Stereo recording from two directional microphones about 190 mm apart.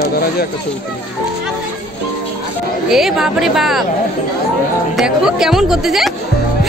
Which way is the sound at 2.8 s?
Centre (ahead or behind).